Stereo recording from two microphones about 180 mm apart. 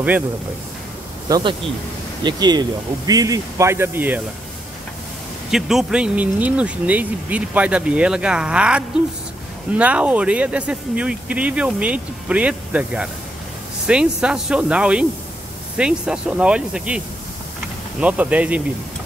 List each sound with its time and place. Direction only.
2.2 s speech: 25° right (ahead or behind)
5.5 s speech: centre (ahead or behind)
18.0 s speech: 10° right (ahead or behind)